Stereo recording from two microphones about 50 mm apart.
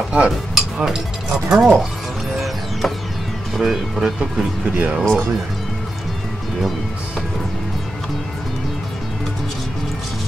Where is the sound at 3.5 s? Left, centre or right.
Centre.